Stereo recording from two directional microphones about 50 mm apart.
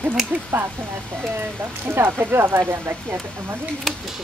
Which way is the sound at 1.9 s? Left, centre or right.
Right.